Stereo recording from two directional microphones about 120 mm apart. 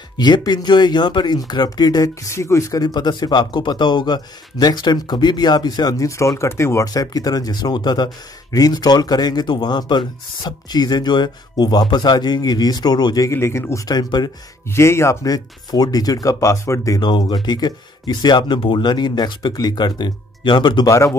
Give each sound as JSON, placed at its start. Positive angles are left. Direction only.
{"t": 0.2, "sound": "speech", "side_deg": 35}
{"t": 14.7, "sound": "speech", "side_deg": 20}
{"t": 20.9, "sound": "speech", "side_deg": 25}